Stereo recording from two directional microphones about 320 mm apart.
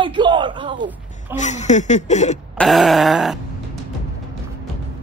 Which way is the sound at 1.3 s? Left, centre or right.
Left.